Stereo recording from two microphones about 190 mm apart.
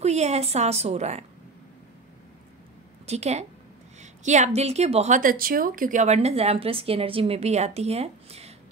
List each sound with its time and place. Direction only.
0.0 s speech: 35° right (ahead or behind)
3.1 s speech: 35° right (ahead or behind)
4.0 s a sound: 40° right (ahead or behind)
4.6 s speech: 35° right (ahead or behind)